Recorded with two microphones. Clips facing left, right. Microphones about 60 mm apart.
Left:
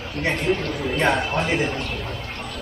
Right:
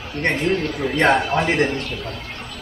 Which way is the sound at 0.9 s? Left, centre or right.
Right.